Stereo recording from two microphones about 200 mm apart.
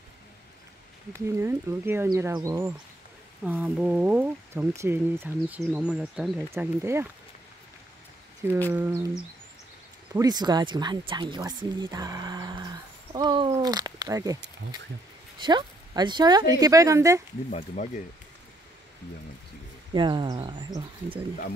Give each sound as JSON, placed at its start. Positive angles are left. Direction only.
{"t": 1.1, "sound": "speech", "side_deg": -10}
{"t": 6.5, "sound": "speech", "side_deg": -15}
{"t": 8.4, "sound": "speech", "side_deg": -10}
{"t": 10.1, "sound": "speech", "side_deg": -20}
{"t": 15.4, "sound": "speech", "side_deg": -20}
{"t": 17.5, "sound": "speech", "side_deg": 35}
{"t": 19.9, "sound": "speech", "side_deg": -20}